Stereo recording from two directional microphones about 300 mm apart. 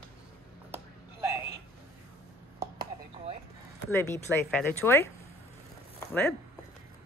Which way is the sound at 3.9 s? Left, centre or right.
Centre.